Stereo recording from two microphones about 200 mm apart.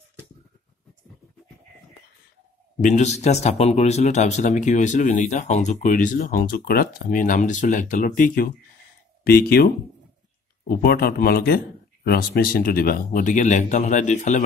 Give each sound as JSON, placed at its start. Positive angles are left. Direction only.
{"t": 2.8, "sound": "speech", "side_deg": 35}
{"t": 10.7, "sound": "speech", "side_deg": 50}